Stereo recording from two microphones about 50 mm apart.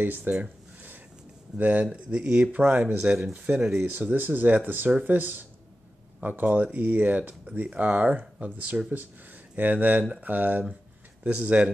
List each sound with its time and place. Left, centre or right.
0.0 s speech: right
0.3 s a sound: right
1.6 s speech: right
1.9 s speech: right
2.5 s speech: right
3.0 s speech: centre
4.1 s speech: right
9.6 s speech: right